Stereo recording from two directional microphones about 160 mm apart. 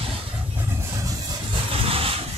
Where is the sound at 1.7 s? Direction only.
35° right (ahead or behind).